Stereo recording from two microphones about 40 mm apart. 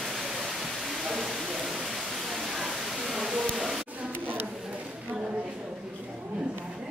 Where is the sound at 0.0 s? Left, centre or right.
Centre.